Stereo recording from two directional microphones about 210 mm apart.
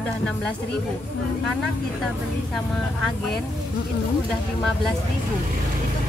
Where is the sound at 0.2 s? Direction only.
5° left (ahead or behind).